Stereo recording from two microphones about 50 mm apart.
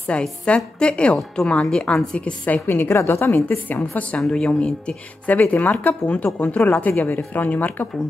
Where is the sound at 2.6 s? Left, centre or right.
Left.